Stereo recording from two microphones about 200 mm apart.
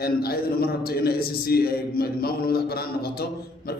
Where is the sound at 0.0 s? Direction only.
50° left (ahead or behind).